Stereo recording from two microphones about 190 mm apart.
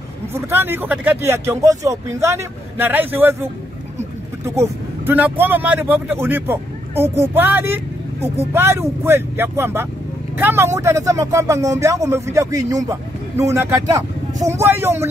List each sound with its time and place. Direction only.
0.3 s speech: 10° right (ahead or behind)
4.6 s speech: 15° right (ahead or behind)